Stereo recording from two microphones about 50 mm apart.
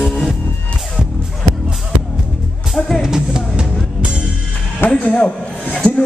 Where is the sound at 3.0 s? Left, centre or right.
Centre.